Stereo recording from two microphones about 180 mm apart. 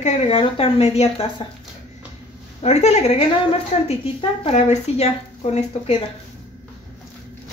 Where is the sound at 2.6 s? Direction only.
35° left (ahead or behind).